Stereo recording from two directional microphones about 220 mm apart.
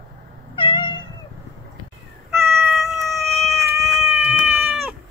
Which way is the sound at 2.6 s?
Centre (ahead or behind).